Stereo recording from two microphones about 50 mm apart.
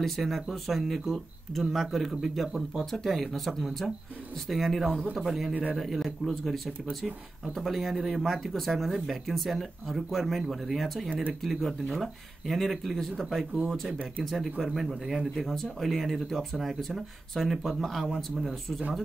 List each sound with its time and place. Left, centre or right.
0.0 s speech: centre
5.5 s speech: right
5.8 s speech: centre